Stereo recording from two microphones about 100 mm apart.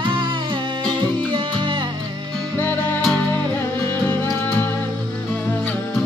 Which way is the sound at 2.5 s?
20° left (ahead or behind).